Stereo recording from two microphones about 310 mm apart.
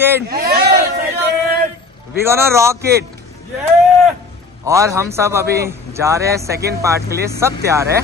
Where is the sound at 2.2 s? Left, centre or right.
Centre.